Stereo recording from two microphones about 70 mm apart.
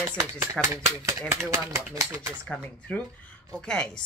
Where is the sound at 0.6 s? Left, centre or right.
Centre.